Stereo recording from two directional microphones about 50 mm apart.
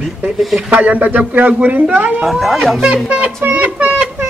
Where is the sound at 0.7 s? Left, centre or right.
Right.